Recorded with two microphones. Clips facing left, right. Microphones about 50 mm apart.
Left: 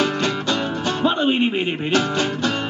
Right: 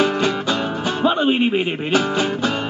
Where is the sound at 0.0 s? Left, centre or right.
Centre.